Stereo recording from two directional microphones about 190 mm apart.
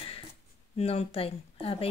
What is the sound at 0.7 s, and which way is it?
Speech, 35° left (ahead or behind).